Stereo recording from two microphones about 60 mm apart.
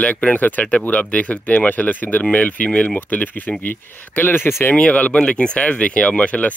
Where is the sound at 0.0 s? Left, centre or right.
Left.